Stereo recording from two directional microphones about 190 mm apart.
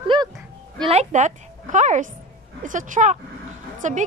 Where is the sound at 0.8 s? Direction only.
35° right (ahead or behind).